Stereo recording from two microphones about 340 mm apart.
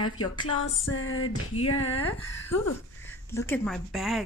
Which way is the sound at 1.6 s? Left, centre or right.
Left.